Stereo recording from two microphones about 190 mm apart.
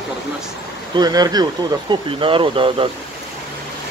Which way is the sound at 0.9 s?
20° right (ahead or behind).